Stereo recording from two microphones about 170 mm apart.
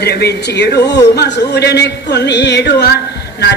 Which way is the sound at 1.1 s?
75° left (ahead or behind).